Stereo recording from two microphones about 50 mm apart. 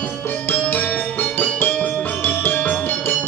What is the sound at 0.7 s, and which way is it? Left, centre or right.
Music, left.